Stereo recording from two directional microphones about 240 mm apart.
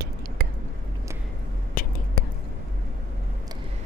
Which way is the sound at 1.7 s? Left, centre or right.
Left.